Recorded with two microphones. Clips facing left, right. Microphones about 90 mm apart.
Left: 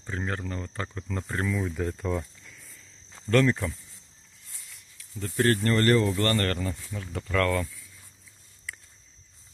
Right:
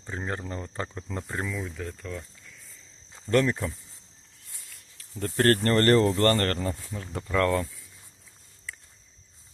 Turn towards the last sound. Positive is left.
turn(degrees=-30)  # may be behind; listen again after turning